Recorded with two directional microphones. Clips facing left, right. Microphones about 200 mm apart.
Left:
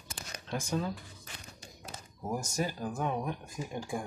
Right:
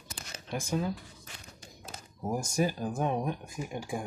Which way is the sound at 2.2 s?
10° right (ahead or behind).